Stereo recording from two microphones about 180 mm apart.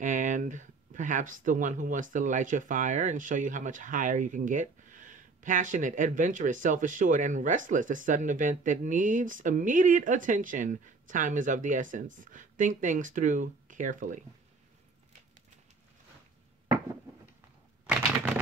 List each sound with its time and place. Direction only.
0.0 s speech: 45° right (ahead or behind)